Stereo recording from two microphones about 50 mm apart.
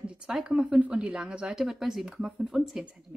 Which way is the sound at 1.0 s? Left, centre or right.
Right.